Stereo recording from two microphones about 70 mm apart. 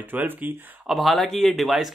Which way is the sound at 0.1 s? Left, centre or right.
Right.